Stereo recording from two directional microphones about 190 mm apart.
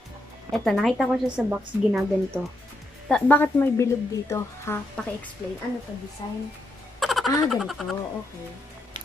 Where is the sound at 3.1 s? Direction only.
10° left (ahead or behind).